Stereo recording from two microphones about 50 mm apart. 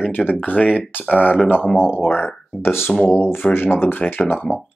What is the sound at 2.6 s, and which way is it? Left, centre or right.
Speech, left.